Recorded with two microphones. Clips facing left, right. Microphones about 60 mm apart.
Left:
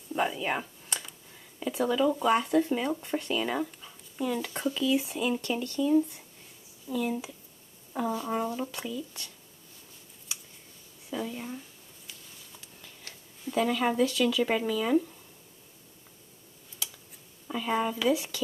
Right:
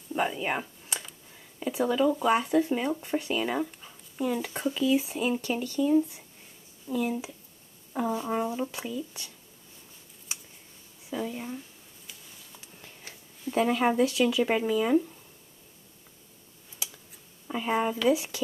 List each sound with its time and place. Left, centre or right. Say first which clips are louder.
0.1 s computer keyboard: even; centre
1.7 s speech: right 1 dB; centre
11.1 s speech: right 1 dB; centre
13.6 s speech: right 2 dB; right; by 15.0 s centre
17.5 s speech: right 1 dB; centre